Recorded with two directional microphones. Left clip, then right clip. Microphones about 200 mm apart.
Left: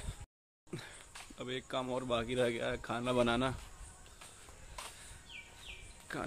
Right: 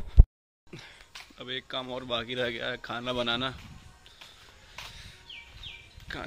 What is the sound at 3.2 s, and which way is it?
Speech, 25° left (ahead or behind).